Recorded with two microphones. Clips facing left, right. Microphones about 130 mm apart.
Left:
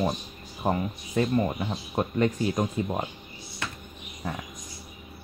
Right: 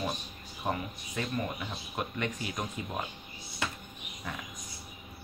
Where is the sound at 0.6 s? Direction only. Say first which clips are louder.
Left 7 dB; 35° left (ahead or behind).